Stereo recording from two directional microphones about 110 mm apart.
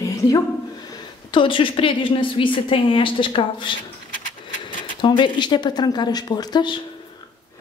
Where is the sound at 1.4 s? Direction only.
50° left (ahead or behind).